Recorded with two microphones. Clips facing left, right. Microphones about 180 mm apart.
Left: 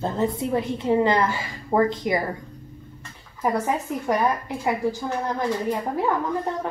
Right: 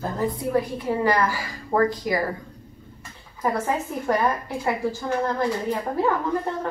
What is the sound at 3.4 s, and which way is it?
Speech, 15° left (ahead or behind).